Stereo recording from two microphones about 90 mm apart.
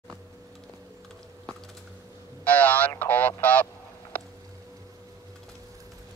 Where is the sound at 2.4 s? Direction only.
15° left (ahead or behind).